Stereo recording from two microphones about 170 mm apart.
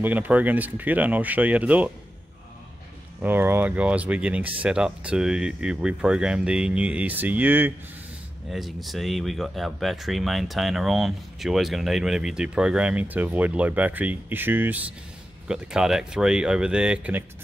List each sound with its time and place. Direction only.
0.0 s speech: 10° right (ahead or behind)
3.2 s speech: 10° right (ahead or behind)
8.5 s speech: centre (ahead or behind)